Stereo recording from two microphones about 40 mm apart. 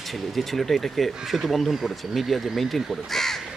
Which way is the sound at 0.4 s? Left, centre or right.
Centre.